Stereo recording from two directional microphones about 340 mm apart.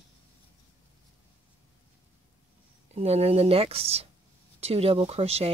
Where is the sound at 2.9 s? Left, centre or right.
Centre.